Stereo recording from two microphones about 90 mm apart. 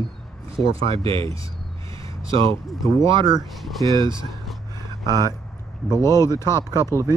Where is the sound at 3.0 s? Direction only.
60° right (ahead or behind).